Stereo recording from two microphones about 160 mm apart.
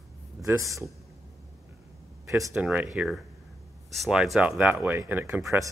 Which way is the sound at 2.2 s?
20° right (ahead or behind).